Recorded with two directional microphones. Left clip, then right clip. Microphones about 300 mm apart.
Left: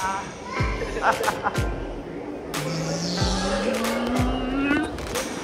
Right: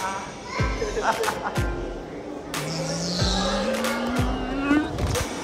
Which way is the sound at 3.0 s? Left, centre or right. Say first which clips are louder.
Right 2 dB; centre.